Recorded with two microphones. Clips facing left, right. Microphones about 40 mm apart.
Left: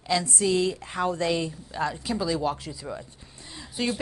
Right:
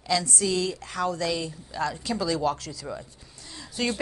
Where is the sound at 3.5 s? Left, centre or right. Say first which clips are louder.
Even; centre.